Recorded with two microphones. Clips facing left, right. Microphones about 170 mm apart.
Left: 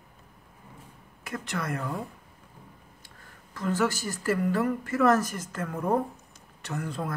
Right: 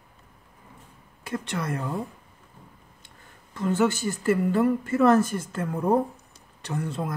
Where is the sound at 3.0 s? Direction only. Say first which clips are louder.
Even; 25° right (ahead or behind).